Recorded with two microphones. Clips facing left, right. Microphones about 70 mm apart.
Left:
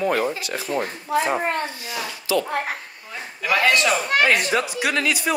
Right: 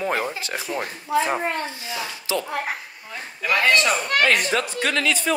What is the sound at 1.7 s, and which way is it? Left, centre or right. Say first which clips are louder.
Speech: even; right.